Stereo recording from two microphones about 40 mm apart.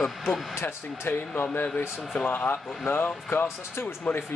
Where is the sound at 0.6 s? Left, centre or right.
Left.